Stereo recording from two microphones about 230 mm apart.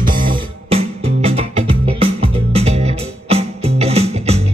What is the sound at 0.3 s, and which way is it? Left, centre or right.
Music, right.